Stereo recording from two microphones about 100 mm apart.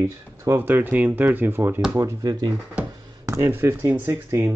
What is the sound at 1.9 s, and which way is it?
Speech, 35° right (ahead or behind).